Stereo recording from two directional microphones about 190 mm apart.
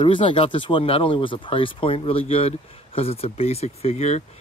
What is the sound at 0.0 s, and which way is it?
Speech, 25° left (ahead or behind).